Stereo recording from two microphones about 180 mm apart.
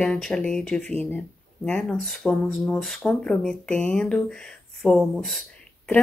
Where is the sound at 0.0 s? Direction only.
5° left (ahead or behind).